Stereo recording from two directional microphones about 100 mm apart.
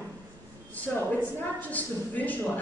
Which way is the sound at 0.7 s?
15° left (ahead or behind).